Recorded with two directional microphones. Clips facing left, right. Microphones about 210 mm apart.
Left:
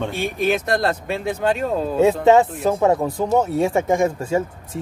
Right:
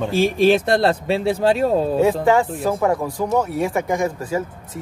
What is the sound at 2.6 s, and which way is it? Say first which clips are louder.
Speech: left 2 dB; 20° left (ahead or behind).